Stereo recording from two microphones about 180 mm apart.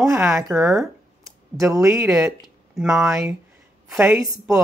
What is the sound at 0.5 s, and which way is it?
Speech, centre (ahead or behind).